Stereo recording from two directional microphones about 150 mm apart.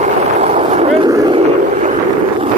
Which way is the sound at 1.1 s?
25° right (ahead or behind).